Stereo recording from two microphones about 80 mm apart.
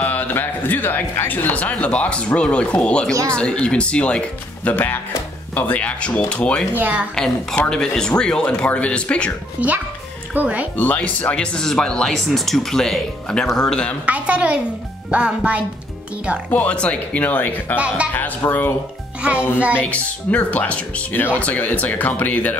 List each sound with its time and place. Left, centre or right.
0.0 s a man's voice: left
6.7 s speech: right
7.7 s a man's voice: centre
9.6 s a woman's voice: centre
10.8 s a man's voice: centre
14.0 s a woman's voice: centre
16.4 s a man's voice: centre
17.7 s a woman's voice: centre
18.1 s speech: left
19.8 s a man's voice: centre